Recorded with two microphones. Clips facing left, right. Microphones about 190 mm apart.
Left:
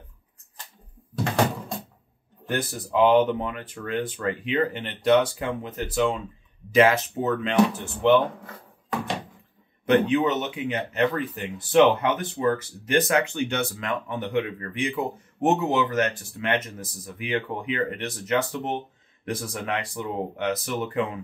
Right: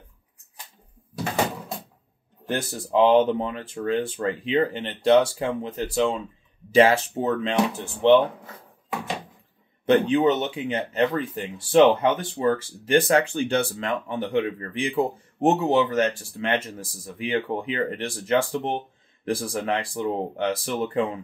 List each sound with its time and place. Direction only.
1.1 s a sound: 5° right (ahead or behind)
2.4 s speech: 30° right (ahead or behind)
9.8 s speech: 30° right (ahead or behind)